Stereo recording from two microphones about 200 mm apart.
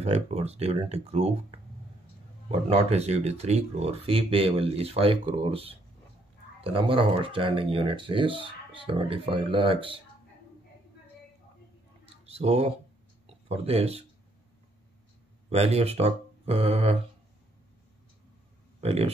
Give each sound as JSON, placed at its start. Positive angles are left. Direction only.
{"t": 0.0, "sound": "speech", "side_deg": -30}
{"t": 12.3, "sound": "speech", "side_deg": -30}
{"t": 15.5, "sound": "speech", "side_deg": -30}
{"t": 18.8, "sound": "speech", "side_deg": -30}